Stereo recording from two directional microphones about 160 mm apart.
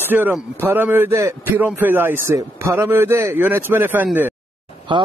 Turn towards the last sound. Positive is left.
turn(degrees=-30)  # may be behind; listen again after turning